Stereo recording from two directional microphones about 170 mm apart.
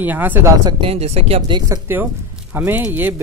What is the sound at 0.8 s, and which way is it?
Speech, 35° right (ahead or behind).